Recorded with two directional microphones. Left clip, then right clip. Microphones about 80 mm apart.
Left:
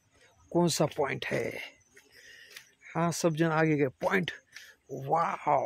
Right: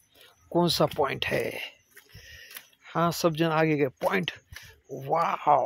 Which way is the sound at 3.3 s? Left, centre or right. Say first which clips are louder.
Right 3 dB; centre.